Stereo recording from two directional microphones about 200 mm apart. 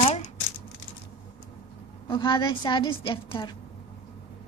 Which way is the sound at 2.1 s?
25° left (ahead or behind).